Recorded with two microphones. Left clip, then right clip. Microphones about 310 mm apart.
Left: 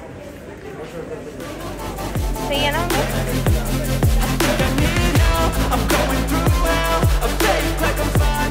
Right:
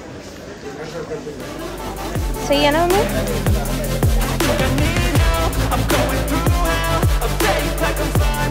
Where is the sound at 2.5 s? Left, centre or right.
Right.